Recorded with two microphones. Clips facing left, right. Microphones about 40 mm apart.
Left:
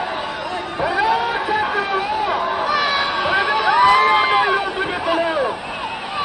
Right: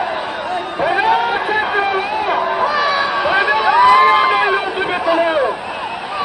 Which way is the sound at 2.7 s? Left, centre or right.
Left.